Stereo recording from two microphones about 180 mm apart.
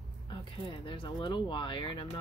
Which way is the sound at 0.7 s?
30° left (ahead or behind).